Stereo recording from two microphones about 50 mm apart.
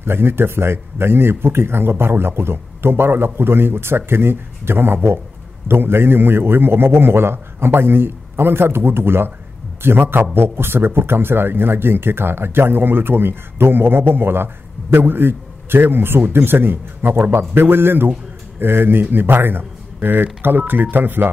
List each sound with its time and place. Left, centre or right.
0.0 s speech: right